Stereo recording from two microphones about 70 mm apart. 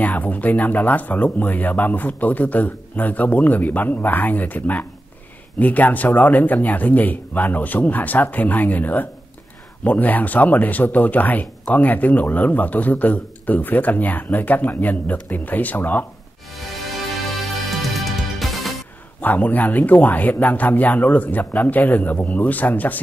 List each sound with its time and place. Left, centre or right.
0.0 s speech: left
17.6 s music: centre
19.2 s speech: left